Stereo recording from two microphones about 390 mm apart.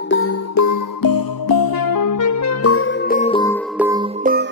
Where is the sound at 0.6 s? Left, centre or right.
Left; by 3.5 s centre.